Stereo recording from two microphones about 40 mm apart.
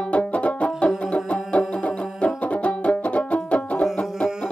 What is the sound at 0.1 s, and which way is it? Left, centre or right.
Music, left.